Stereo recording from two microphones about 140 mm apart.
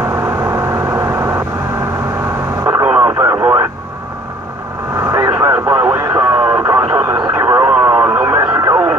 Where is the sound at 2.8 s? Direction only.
10° right (ahead or behind).